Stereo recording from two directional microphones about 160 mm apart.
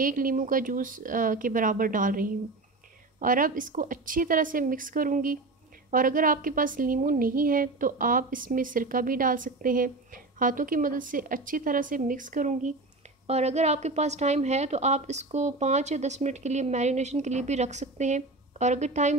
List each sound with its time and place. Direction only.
0.0 s a woman's voice: 60° right (ahead or behind)
13.3 s a woman's voice: 40° right (ahead or behind)